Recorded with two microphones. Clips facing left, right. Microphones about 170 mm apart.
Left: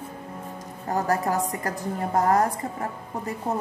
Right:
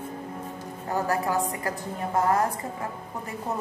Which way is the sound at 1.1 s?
40° left (ahead or behind).